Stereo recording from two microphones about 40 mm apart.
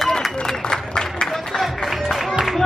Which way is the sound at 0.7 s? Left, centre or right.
Centre.